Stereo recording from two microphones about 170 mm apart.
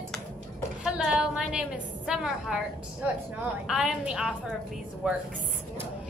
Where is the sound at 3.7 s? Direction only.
5° right (ahead or behind).